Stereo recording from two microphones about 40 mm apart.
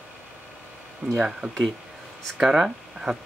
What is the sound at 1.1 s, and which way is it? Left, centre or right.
Speech, centre.